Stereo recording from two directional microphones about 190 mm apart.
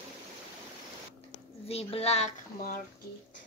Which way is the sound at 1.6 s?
30° left (ahead or behind).